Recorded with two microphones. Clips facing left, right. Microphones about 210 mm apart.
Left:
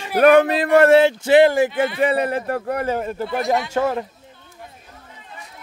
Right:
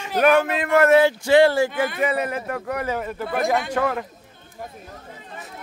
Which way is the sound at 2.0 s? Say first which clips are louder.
Left 4 dB; 30° left (ahead or behind).